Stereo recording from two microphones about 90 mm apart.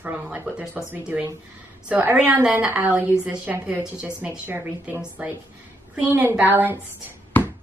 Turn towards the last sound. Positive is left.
turn(degrees=20)  # may be behind; listen again after turning